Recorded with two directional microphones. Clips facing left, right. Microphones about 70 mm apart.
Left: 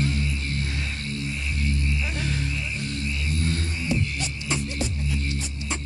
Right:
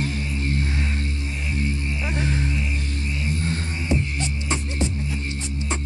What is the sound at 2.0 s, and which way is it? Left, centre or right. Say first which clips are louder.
Buzz: right 3 dB; right.